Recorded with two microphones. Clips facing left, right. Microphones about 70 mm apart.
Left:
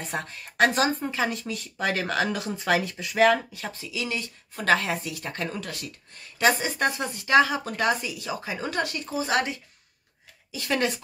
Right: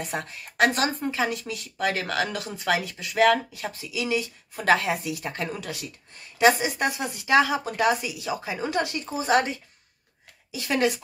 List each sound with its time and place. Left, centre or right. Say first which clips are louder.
0.0 s speech: right 1 dB; centre; by 9.6 s right
10.5 s speech: right 2 dB; centre